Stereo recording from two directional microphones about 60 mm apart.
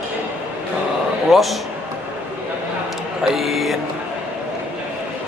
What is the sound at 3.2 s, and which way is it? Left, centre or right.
Speech, centre.